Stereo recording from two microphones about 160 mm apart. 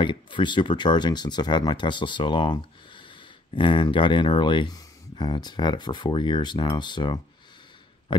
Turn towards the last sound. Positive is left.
turn(degrees=30)  # may be behind; listen again after turning